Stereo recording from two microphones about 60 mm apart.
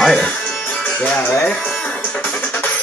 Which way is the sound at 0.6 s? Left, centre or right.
Left.